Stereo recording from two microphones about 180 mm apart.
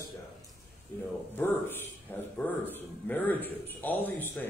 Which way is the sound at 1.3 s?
10° left (ahead or behind).